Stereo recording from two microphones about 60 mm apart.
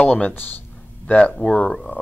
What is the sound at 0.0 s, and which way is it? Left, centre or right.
Speech, left.